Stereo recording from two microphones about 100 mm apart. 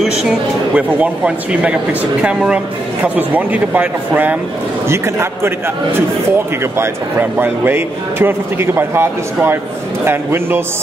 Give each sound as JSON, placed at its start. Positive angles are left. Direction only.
{"t": 0.0, "sound": "speech", "side_deg": -5}
{"t": 4.8, "sound": "a man's voice", "side_deg": -25}
{"t": 6.6, "sound": "a man's voice", "side_deg": -20}